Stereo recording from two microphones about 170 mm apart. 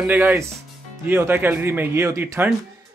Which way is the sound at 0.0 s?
10° right (ahead or behind).